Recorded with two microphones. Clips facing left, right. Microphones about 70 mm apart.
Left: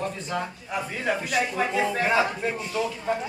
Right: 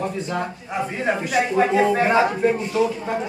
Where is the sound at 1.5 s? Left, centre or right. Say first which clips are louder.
Right 8 dB; right.